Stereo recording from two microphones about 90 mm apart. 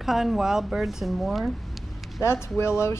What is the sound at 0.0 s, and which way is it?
Speech, centre (ahead or behind).